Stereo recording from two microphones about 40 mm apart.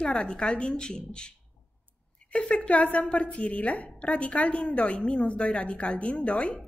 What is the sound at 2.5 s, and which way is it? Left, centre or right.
A woman's voice, left.